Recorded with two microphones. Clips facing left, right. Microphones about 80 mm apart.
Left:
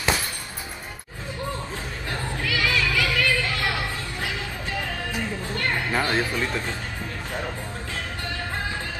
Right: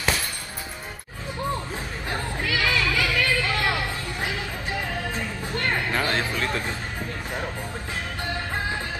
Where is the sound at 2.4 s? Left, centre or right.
Right.